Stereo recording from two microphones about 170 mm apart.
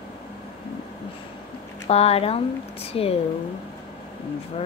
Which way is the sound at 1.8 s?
35° left (ahead or behind).